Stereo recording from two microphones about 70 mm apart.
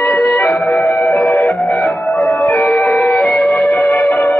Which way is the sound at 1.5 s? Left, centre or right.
Centre.